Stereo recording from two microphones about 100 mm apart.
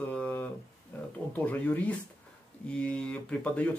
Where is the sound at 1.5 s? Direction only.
15° left (ahead or behind).